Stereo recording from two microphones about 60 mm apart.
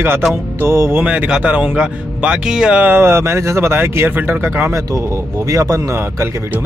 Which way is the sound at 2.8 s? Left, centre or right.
Right.